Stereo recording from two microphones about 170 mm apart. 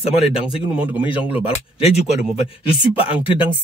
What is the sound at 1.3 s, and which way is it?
Speech, 40° left (ahead or behind).